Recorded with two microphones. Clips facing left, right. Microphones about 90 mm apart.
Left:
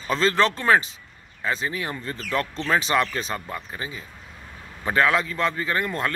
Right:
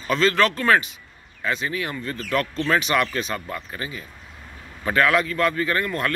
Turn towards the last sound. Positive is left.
turn(degrees=25)  # may be behind; listen again after turning